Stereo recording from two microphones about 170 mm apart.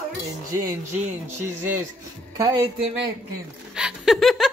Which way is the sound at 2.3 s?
20° right (ahead or behind).